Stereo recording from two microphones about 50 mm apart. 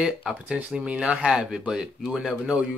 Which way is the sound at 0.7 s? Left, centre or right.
Right.